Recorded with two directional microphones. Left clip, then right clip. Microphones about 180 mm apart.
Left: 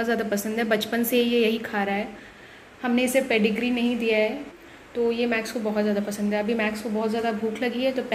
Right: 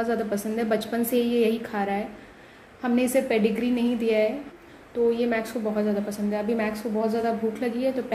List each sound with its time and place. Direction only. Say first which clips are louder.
0.0 s a woman's voice: left 1 dB; 5° right (ahead or behind)
7.5 s a woman's voice: left 1 dB; 5° right (ahead or behind)